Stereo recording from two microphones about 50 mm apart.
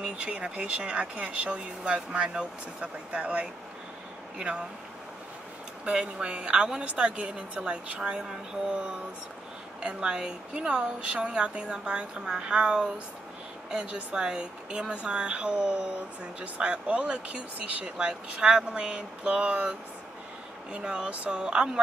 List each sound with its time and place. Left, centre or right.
0.0 s speech: right
5.9 s speech: centre
17.8 s speech: centre